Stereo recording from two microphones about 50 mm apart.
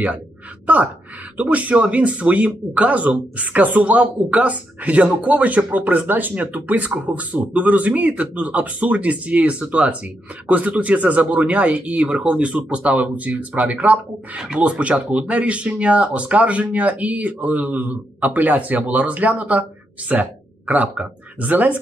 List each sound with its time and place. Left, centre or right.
1.3 s speech: right